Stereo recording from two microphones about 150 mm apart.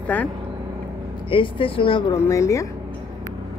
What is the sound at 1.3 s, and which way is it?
Speech, 35° left (ahead or behind).